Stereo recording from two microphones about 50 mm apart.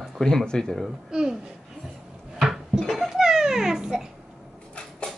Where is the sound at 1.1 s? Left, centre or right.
Centre.